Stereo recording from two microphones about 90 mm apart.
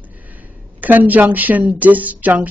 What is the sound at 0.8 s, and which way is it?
Speech, 20° right (ahead or behind).